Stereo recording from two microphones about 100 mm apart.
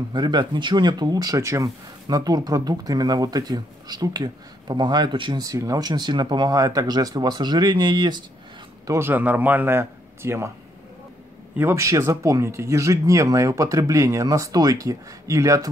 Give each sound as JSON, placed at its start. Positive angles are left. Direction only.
{"t": 0.1, "sound": "speech", "side_deg": -45}
{"t": 5.4, "sound": "speech", "side_deg": -35}
{"t": 8.8, "sound": "a man's voice", "side_deg": -25}
{"t": 11.5, "sound": "speech", "side_deg": -25}